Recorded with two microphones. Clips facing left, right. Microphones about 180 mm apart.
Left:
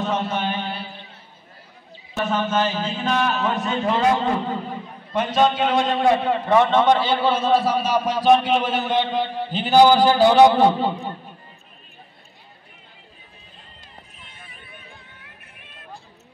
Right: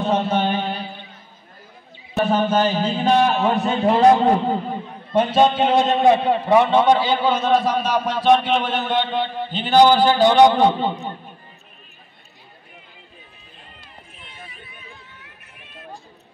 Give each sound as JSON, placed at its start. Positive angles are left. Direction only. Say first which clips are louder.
{"t": 0.0, "sound": "mantra", "louder": "right 4 dB", "side_deg": -30}
{"t": 2.1, "sound": "a man's voice", "louder": "right 4 dB", "side_deg": -35}
{"t": 14.1, "sound": "a sound", "louder": "right 4 dB", "side_deg": 45}